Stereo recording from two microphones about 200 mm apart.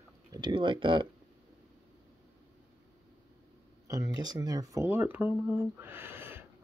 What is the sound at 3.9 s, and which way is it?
Speech, 20° right (ahead or behind).